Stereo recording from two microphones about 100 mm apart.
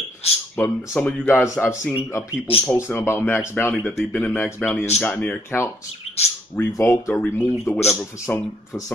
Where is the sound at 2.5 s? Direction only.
75° left (ahead or behind).